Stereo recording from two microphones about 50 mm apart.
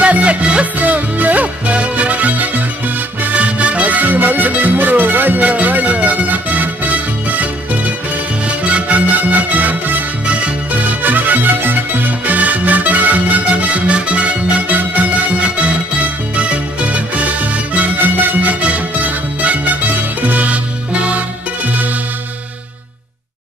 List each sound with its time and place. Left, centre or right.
0.0 s music: right
8.5 s music: right
10.2 s music: right
13.7 s music: right